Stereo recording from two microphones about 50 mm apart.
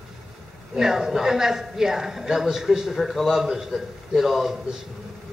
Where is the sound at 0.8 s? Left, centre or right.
Centre.